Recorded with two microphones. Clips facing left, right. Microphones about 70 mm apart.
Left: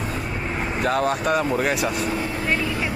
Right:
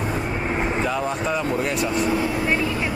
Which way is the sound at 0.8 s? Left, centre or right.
Left.